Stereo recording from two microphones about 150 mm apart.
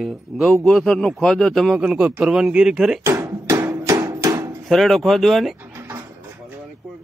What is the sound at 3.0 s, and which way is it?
Music, 15° right (ahead or behind).